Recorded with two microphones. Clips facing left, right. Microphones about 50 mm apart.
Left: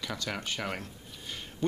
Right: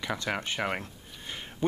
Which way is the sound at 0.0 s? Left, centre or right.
Right.